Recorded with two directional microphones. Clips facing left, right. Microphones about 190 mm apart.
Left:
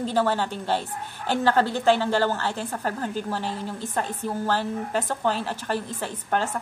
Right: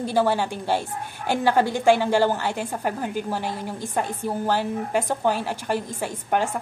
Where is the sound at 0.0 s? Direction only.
10° right (ahead or behind).